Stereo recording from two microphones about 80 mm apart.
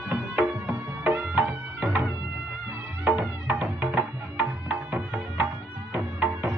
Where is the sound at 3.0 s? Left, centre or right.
Right.